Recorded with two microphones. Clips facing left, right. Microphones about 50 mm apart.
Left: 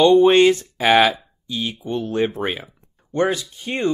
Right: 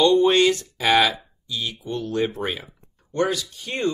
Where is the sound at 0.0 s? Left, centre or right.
Left.